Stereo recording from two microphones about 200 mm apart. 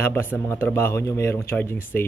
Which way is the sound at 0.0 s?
10° left (ahead or behind).